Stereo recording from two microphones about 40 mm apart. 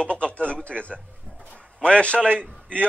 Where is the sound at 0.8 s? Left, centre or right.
Left.